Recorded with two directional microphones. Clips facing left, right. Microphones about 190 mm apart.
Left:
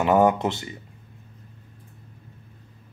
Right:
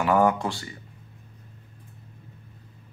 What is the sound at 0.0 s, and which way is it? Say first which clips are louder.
Speech: left 3 dB; 20° left (ahead or behind).